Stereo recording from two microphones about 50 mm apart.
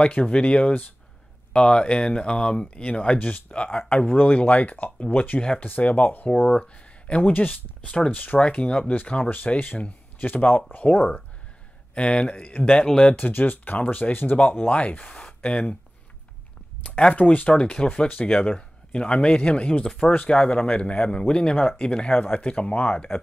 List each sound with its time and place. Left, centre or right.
0.0 s speech: left
6.4 s speech: left
11.9 s speech: left
12.8 s speech: centre
13.1 s speech: left
17.1 s speech: left